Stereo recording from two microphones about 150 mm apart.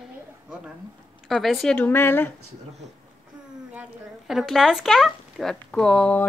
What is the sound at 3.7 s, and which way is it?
Speech, 5° right (ahead or behind).